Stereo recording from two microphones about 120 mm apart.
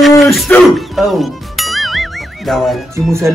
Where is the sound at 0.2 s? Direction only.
Centre (ahead or behind).